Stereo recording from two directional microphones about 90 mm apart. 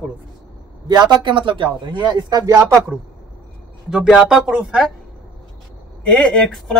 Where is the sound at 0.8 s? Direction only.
50° right (ahead or behind).